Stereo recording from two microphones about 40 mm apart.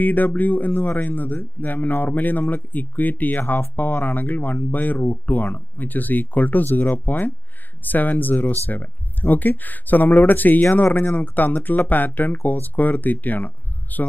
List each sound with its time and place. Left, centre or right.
0.0 s speech: left